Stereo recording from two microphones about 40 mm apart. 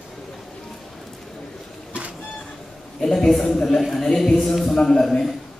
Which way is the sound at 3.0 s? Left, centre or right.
Centre.